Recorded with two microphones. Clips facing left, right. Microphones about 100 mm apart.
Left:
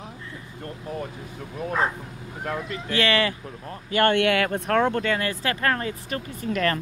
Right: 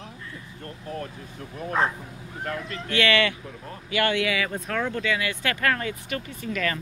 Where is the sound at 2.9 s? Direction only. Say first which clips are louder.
Even; 35° left (ahead or behind).